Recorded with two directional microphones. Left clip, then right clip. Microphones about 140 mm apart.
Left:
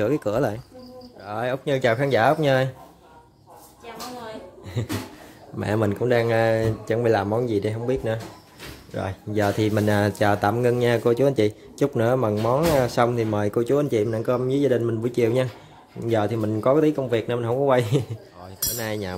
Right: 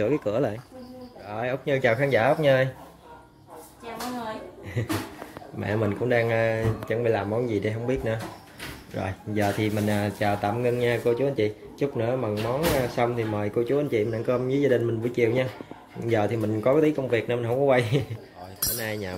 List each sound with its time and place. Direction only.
0.0 s speech: 35° left (ahead or behind)
4.8 s speech: 25° left (ahead or behind)
5.6 s speech: 35° left (ahead or behind)
9.6 s speech: 45° left (ahead or behind); by 18.0 s 25° left (ahead or behind)
18.7 s speech: 40° left (ahead or behind)